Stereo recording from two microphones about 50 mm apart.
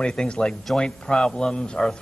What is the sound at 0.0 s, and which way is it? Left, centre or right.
Speech, centre.